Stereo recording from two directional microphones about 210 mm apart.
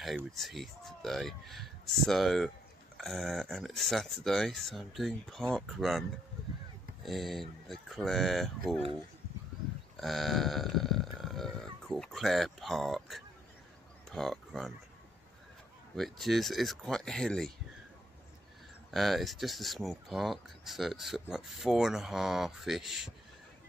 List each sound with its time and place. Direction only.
0.0 s speech: centre (ahead or behind)
9.9 s burping: centre (ahead or behind)
14.1 s speech: centre (ahead or behind)
16.0 s speech: centre (ahead or behind)
18.9 s speech: centre (ahead or behind)